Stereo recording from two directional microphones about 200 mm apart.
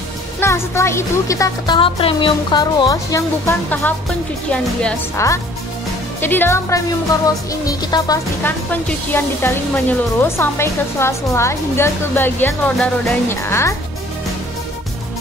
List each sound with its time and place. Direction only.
0.4 s a woman's voice: 15° left (ahead or behind)
6.2 s speech: 10° left (ahead or behind)
7.2 s music: 20° left (ahead or behind)
9.1 s speech: 10° left (ahead or behind)